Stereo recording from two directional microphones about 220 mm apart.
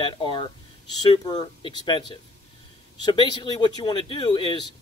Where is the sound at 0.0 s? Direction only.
25° left (ahead or behind).